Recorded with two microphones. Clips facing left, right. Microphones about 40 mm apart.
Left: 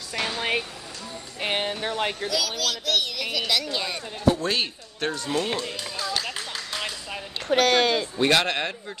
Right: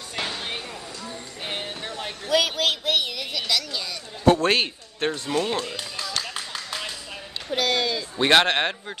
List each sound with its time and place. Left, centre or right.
0.4 s a sound: left
1.4 s music: left
2.2 s speech: right
2.9 s a child's voice: centre
3.3 s a woman's voice: centre
4.2 s a man's voice: right
5.0 s speech: right
7.5 s speech: left
8.2 s speech: right